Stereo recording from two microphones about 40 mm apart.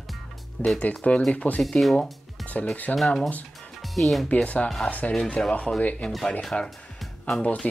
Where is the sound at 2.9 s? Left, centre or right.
Left.